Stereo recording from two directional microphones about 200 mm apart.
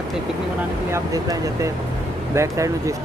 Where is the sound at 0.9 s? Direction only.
15° right (ahead or behind).